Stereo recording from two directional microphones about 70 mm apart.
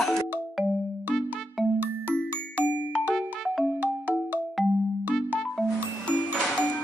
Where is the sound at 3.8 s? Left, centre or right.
Right.